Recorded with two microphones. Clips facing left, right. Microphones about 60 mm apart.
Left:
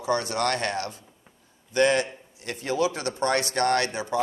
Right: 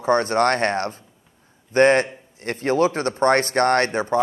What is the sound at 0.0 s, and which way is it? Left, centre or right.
A man's voice, right.